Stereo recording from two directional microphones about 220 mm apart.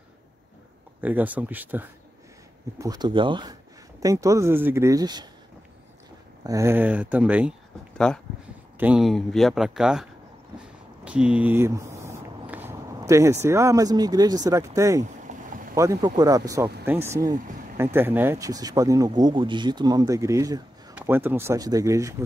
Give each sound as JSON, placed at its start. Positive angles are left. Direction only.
{"t": 1.0, "sound": "speech", "side_deg": -5}
{"t": 2.8, "sound": "speech", "side_deg": -20}
{"t": 6.4, "sound": "speech", "side_deg": -15}
{"t": 10.6, "sound": "a sound", "side_deg": -5}
{"t": 14.8, "sound": "speech", "side_deg": -15}
{"t": 15.2, "sound": "boat", "side_deg": -35}
{"t": 15.7, "sound": "speech", "side_deg": -15}